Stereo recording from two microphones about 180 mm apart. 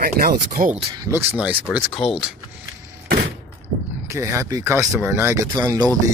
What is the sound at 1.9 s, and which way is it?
Speech, 30° left (ahead or behind).